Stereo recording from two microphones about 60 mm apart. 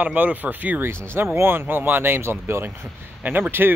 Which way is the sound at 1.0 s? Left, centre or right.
Right.